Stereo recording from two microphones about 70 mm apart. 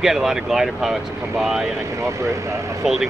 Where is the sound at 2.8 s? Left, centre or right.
Centre.